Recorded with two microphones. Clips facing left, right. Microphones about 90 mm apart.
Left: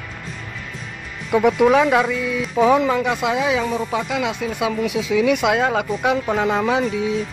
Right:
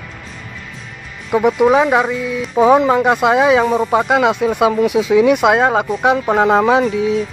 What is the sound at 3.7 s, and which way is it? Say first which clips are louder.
Speech: right 8 dB; 45° right (ahead or behind).